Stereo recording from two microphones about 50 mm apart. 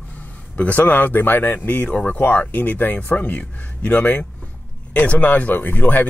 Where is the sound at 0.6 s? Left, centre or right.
Left.